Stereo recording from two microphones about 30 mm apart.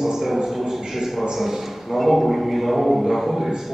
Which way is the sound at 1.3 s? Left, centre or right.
Centre.